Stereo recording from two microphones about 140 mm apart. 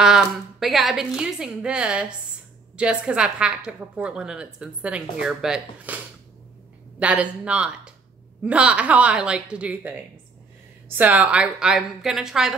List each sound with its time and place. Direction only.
0.0 s a woman's voice: 5° right (ahead or behind)